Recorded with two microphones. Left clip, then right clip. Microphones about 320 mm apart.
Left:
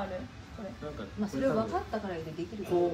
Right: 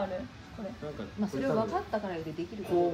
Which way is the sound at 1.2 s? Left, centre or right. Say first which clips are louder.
Even; right.